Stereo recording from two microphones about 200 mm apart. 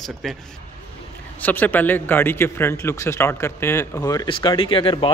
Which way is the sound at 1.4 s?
10° left (ahead or behind).